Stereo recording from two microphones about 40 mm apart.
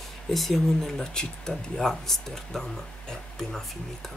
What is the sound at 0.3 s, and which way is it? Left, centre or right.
Speech, centre.